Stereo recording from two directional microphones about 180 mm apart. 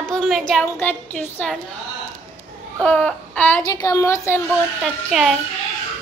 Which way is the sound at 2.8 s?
10° left (ahead or behind).